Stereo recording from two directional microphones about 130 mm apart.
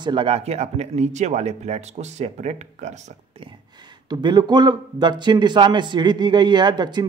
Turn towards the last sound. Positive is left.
turn(degrees=-35)  # may be behind; listen again after turning